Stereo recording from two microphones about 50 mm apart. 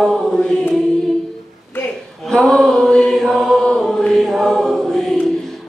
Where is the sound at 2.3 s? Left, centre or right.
Centre.